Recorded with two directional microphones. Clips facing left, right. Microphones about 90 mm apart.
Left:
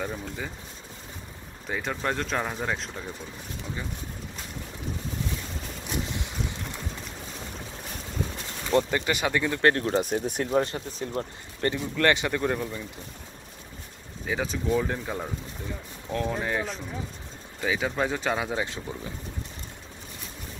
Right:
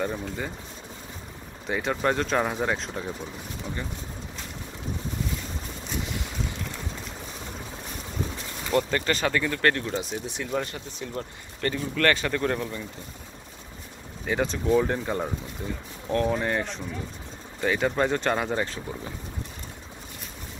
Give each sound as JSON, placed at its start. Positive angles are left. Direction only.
{"t": 0.0, "sound": "speech", "side_deg": 0}
{"t": 1.7, "sound": "speech", "side_deg": 0}
{"t": 8.9, "sound": "speech", "side_deg": 15}
{"t": 9.8, "sound": "speech", "side_deg": 35}
{"t": 10.0, "sound": "speech", "side_deg": 50}
{"t": 10.5, "sound": "speech", "side_deg": 30}
{"t": 11.7, "sound": "speech", "side_deg": 20}
{"t": 14.2, "sound": "speech", "side_deg": 0}